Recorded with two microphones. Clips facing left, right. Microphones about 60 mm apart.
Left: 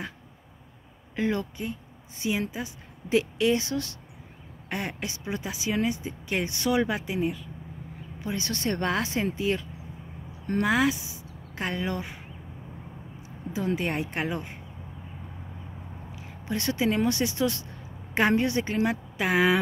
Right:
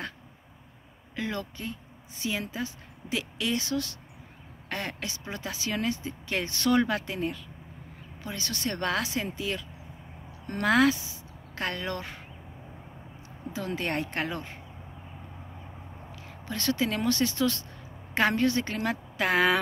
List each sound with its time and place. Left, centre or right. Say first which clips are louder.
1.1 s speech: left 5 dB; left; by 7.4 s centre
8.2 s speech: left 3 dB; left
10.6 s speech: right 2 dB; centre
11.0 s speech: left 2 dB; left
13.5 s speech: left 3 dB; left
16.2 s speech: left 4 dB; left
17.6 s a sound: left 2 dB; left
19.2 s speech: left 1 dB; centre